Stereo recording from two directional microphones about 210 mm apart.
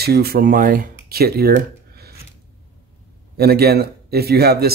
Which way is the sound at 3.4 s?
50° right (ahead or behind).